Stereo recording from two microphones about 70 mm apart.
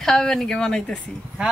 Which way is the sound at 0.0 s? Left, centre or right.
Centre.